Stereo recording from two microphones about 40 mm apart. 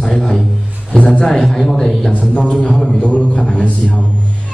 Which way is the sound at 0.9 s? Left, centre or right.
Left.